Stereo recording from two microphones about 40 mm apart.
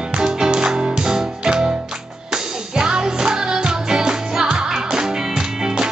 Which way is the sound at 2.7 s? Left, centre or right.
Centre.